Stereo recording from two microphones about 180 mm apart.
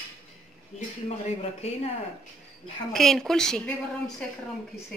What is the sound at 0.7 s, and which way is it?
Speech, 35° left (ahead or behind).